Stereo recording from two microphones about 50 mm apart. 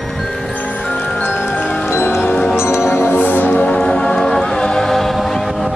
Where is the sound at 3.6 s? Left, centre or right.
Centre.